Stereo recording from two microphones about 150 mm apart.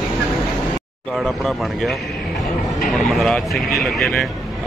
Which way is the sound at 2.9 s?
Centre (ahead or behind).